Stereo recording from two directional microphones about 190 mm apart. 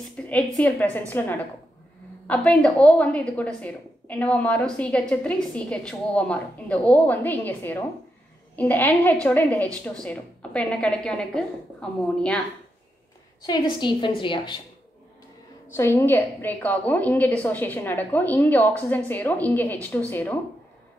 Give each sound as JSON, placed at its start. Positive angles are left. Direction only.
{"t": 0.0, "sound": "a woman's voice", "side_deg": 5}
{"t": 13.5, "sound": "a woman's voice", "side_deg": 25}
{"t": 15.7, "sound": "a woman's voice", "side_deg": 15}